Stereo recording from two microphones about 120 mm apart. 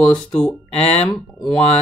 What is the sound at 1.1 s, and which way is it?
Speech, centre (ahead or behind).